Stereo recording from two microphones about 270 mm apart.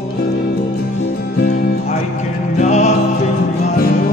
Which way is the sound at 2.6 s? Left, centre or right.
Left.